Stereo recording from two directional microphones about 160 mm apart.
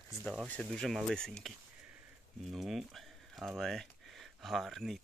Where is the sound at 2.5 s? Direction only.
Centre (ahead or behind).